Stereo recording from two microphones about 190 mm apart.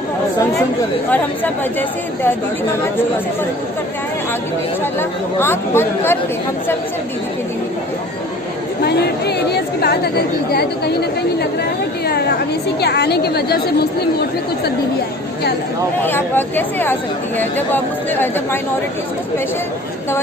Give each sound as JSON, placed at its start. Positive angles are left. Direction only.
{"t": 1.1, "sound": "speech", "side_deg": 10}
{"t": 5.4, "sound": "speech", "side_deg": 10}
{"t": 8.8, "sound": "a woman's voice", "side_deg": 60}
{"t": 12.8, "sound": "a woman's voice", "side_deg": 60}
{"t": 16.0, "sound": "speech", "side_deg": 10}